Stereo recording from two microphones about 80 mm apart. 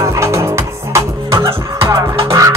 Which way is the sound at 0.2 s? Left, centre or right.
Right.